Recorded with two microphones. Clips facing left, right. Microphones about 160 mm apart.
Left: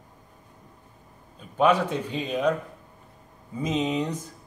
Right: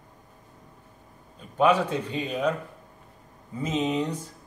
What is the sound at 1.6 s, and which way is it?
Speech, 10° right (ahead or behind).